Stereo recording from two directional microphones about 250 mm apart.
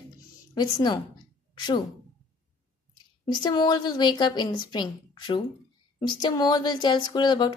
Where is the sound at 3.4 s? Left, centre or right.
Centre.